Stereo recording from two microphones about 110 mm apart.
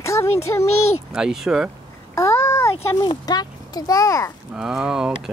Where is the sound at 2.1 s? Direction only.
25° left (ahead or behind).